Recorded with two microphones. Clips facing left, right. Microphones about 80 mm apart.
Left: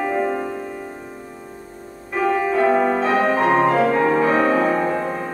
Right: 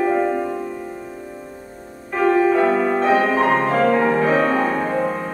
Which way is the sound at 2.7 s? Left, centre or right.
Centre.